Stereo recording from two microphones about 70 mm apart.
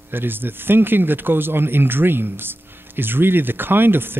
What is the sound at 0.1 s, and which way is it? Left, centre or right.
Speech, right.